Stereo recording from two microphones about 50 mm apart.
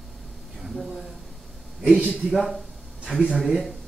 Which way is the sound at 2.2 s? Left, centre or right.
Centre.